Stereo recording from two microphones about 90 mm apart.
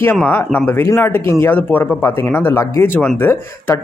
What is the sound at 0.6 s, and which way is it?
Speech, 30° left (ahead or behind).